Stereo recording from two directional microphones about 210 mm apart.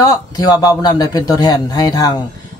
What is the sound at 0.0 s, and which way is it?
Speech, 15° left (ahead or behind).